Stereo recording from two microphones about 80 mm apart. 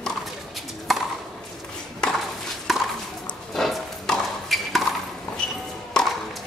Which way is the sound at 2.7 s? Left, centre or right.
Centre.